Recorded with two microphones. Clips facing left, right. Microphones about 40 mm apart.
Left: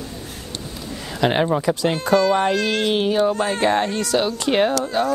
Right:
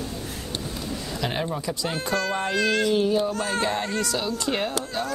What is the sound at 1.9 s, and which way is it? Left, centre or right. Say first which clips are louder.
Speech: left 9 dB; left.